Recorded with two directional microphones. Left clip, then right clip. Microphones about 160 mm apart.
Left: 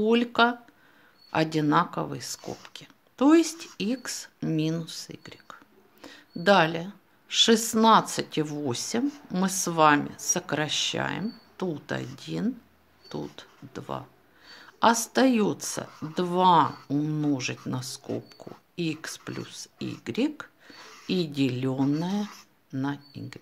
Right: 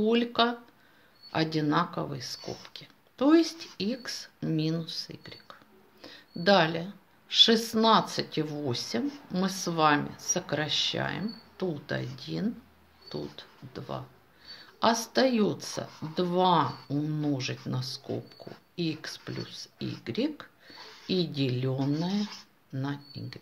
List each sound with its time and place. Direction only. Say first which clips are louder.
0.0 s speech: left 3 dB; 40° left (ahead or behind)
22.2 s speech: even; centre (ahead or behind)
22.7 s speech: left 4 dB; 35° left (ahead or behind)